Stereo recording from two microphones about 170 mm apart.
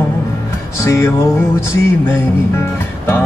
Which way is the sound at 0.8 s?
15° left (ahead or behind).